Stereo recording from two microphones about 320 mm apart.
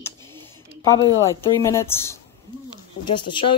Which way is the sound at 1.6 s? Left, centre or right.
Centre.